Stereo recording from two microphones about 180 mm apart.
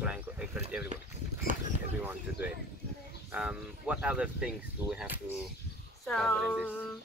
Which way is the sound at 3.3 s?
5° right (ahead or behind).